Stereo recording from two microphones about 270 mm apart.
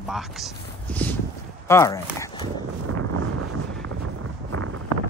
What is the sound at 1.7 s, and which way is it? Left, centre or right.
Walk, centre.